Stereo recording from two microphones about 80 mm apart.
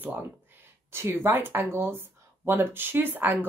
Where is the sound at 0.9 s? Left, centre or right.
Right.